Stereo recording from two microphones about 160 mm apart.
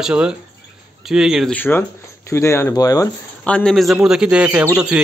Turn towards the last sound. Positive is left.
turn(degrees=-10)  # may be behind; listen again after turning